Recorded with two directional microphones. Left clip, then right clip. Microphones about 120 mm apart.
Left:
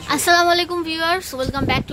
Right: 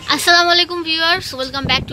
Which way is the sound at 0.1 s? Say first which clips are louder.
Right 3 dB; 10° left (ahead or behind).